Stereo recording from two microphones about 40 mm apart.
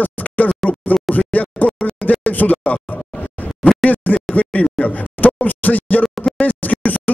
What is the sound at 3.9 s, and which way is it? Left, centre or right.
Scratching, left.